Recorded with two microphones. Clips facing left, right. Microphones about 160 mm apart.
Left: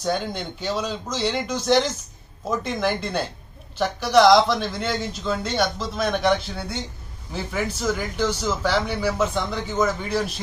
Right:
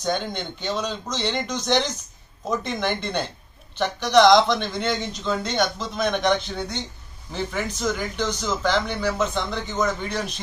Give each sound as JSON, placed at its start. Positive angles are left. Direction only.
{"t": 0.0, "sound": "speech", "side_deg": 5}